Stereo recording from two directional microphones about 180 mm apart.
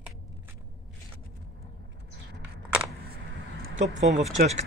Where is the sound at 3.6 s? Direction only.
90° right.